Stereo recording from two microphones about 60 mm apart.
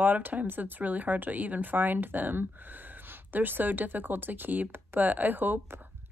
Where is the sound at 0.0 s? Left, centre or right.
Right.